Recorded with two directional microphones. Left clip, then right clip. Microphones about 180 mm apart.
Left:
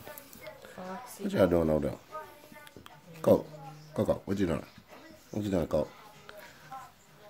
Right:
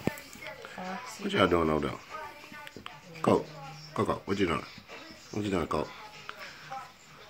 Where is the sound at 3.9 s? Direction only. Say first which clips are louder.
Even; 45° left (ahead or behind).